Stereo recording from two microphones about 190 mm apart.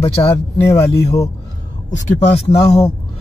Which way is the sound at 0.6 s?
15° left (ahead or behind).